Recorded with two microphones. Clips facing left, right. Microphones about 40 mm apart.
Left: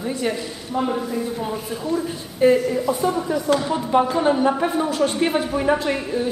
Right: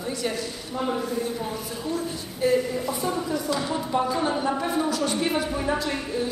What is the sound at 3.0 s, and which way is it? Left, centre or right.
Music, centre.